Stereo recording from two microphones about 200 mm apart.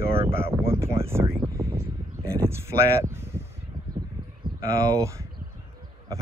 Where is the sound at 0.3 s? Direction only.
10° right (ahead or behind).